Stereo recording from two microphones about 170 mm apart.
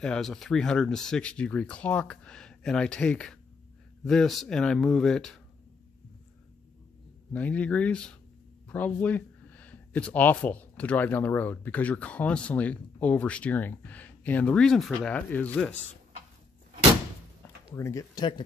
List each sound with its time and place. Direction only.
0.0 s speech: 5° left (ahead or behind)
7.3 s speech: 10° left (ahead or behind)
17.7 s speech: 15° left (ahead or behind)